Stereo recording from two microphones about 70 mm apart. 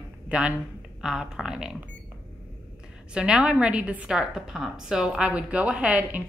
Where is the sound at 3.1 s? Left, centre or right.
Centre.